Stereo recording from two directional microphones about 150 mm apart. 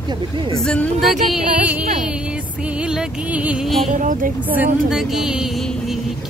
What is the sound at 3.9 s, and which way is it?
Speech, 60° right (ahead or behind).